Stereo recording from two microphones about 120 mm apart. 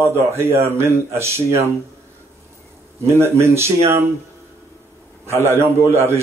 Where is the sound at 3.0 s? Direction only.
20° right (ahead or behind).